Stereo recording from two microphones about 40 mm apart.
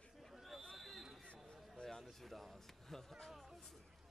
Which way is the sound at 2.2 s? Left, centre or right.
Centre.